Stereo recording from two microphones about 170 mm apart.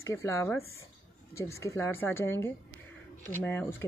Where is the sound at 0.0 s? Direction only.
15° left (ahead or behind).